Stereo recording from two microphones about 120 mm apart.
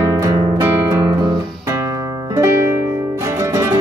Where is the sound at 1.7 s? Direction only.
30° right (ahead or behind).